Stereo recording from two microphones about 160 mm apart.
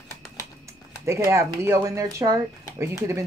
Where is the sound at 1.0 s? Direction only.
20° right (ahead or behind).